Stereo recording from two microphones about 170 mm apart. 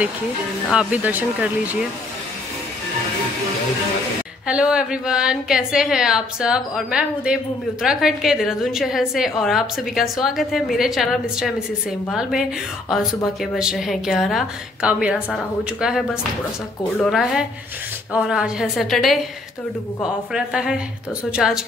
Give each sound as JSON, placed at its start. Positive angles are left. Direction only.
{"t": 0.7, "sound": "speech", "side_deg": -5}
{"t": 4.5, "sound": "a woman's voice", "side_deg": -5}